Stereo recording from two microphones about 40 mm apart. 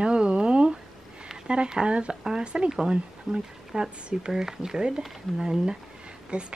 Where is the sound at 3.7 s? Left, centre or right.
Centre.